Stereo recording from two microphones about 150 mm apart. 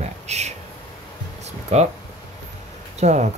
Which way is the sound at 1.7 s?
50° right (ahead or behind).